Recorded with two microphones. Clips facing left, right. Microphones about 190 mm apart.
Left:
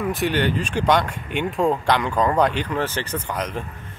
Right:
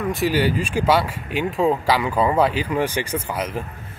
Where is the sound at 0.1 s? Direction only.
5° right (ahead or behind).